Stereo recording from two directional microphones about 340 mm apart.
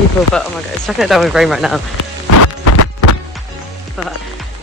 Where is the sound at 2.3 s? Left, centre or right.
Left.